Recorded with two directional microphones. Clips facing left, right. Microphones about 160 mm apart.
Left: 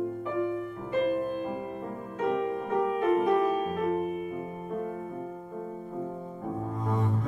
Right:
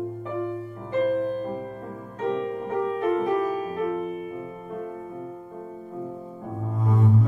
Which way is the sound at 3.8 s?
40° left (ahead or behind).